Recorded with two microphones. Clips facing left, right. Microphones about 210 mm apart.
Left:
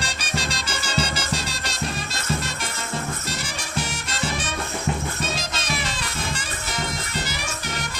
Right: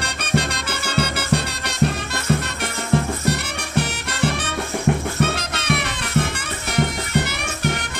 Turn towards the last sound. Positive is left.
turn(degrees=-60)  # may be behind; listen again after turning